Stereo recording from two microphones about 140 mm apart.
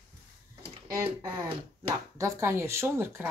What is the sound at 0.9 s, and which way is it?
Speech, 20° right (ahead or behind).